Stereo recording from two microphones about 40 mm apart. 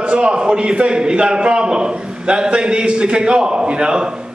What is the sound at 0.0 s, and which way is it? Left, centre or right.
A man's voice, right.